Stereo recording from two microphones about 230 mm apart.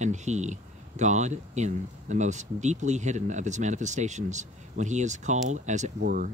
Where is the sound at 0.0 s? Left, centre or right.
Right.